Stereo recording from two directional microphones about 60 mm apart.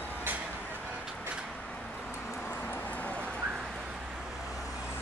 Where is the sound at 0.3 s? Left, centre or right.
Right.